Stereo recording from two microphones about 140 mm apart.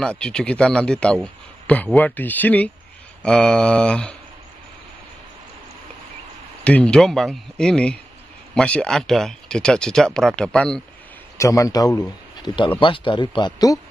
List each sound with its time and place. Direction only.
0.0 s speech: 5° left (ahead or behind)
6.6 s speech: 10° left (ahead or behind)
11.3 s a man's voice: 20° left (ahead or behind)
12.4 s speech: 35° left (ahead or behind)